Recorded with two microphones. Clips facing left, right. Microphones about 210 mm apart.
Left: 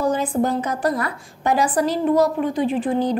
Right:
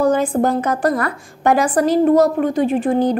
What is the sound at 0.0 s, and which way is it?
A woman's voice, 50° right (ahead or behind).